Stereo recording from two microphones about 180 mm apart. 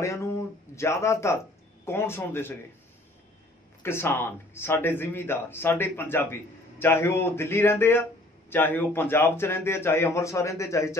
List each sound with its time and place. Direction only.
0.0 s speech: 15° left (ahead or behind)
3.8 s speech: 15° left (ahead or behind)